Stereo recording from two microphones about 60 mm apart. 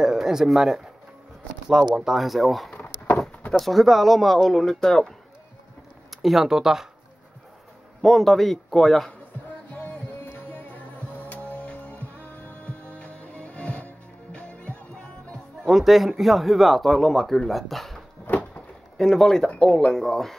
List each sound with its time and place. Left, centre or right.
0.0 s speech: centre
6.2 s speech: centre
8.0 s speech: centre
9.7 s music: left
15.6 s speech: centre
18.3 s a sound: left
18.9 s speech: centre